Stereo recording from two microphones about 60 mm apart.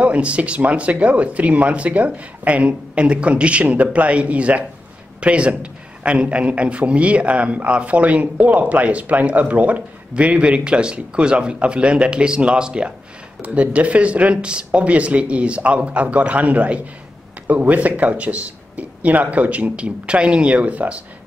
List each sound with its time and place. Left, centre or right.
0.0 s a man's voice: right